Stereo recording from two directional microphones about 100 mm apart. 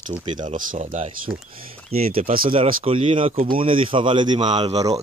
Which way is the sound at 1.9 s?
85° right.